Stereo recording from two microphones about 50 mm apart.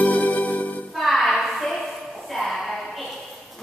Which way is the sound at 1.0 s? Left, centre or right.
Centre.